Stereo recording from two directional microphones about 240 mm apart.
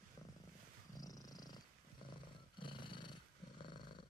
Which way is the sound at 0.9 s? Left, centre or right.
Centre.